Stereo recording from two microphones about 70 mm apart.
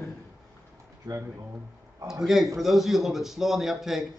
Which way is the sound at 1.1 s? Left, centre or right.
Right.